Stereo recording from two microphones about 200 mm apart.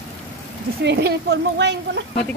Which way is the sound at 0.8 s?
55° right (ahead or behind).